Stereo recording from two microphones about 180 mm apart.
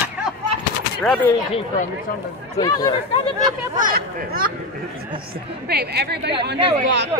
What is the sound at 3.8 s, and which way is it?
Speech, 50° right (ahead or behind).